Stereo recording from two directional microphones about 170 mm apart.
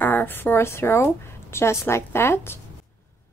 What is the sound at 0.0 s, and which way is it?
Speech, 10° left (ahead or behind).